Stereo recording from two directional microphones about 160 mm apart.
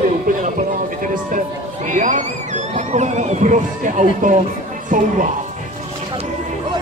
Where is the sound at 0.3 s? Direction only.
60° right (ahead or behind).